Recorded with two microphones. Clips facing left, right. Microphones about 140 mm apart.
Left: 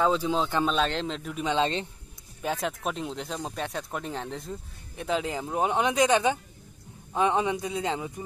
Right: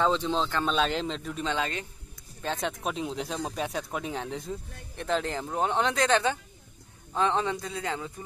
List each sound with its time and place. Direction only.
0.0 s a man's voice: 5° left (ahead or behind)
1.5 s speech: 25° left (ahead or behind)
2.4 s a man's voice: 5° left (ahead or behind)